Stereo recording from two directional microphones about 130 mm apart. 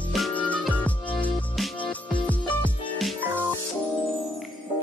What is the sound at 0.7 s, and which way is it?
Music, 10° left (ahead or behind).